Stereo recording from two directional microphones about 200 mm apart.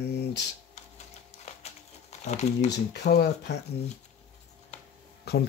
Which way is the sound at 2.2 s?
35° left (ahead or behind).